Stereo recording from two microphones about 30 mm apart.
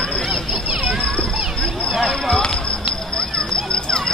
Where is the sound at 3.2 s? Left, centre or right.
Left.